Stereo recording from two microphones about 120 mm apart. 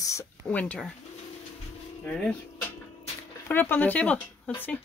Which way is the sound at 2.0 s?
10° left (ahead or behind).